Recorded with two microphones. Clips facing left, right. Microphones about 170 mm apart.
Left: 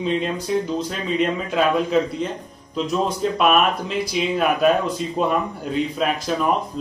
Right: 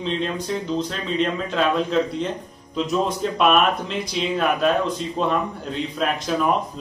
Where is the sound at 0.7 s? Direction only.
5° left (ahead or behind).